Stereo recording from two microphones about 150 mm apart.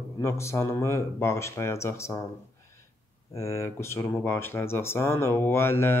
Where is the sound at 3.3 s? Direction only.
20° left (ahead or behind).